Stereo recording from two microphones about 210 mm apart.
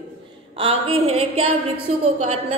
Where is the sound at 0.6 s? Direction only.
25° right (ahead or behind).